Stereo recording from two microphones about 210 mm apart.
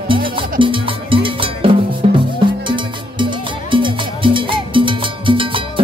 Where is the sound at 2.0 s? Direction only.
25° right (ahead or behind).